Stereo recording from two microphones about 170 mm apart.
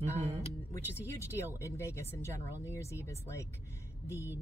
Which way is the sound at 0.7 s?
15° left (ahead or behind).